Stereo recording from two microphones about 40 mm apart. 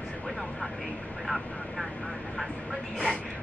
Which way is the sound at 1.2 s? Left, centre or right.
Centre.